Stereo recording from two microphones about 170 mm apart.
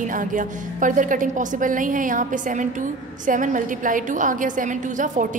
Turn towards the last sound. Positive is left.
turn(degrees=-50)  # may be behind; listen again after turning